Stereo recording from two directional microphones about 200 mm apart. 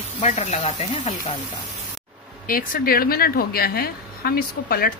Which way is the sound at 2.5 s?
45° left (ahead or behind).